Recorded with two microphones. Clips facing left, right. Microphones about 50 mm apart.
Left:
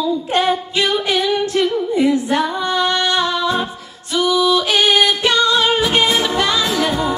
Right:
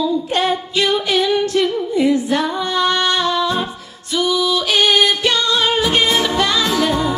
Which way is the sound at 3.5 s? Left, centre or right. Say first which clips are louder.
Left 1 dB; centre.